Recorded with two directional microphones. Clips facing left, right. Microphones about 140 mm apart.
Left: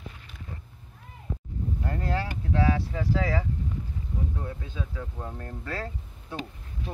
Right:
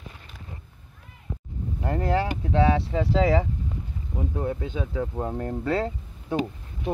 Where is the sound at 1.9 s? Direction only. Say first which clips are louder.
Right 8 dB; 20° right (ahead or behind).